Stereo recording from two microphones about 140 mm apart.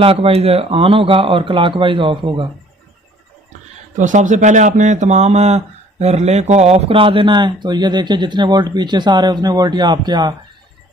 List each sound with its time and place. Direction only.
0.0 s speech: 45° right (ahead or behind)
3.9 s speech: 65° right (ahead or behind); by 10.3 s 30° right (ahead or behind)